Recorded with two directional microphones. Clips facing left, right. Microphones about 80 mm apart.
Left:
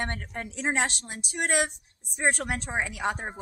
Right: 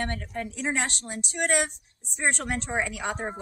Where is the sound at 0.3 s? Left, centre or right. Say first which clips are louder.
Even; left.